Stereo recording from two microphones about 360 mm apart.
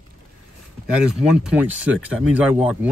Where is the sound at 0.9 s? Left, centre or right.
Centre.